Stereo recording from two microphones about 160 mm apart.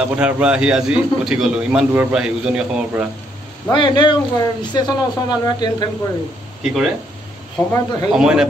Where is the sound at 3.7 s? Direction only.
30° left (ahead or behind).